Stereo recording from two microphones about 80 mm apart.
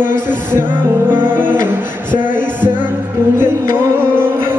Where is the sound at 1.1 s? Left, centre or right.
Right.